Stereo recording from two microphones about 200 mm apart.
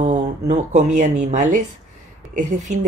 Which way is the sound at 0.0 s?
35° right (ahead or behind).